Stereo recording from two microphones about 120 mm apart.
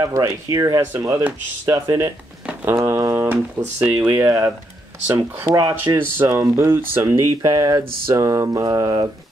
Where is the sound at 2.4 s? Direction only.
20° right (ahead or behind).